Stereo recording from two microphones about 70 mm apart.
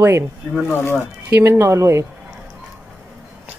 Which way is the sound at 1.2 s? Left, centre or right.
Right.